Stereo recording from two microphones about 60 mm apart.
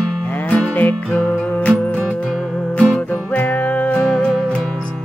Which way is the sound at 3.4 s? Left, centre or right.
Left.